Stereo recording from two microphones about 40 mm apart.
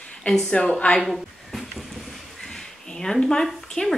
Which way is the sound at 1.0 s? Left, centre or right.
Centre.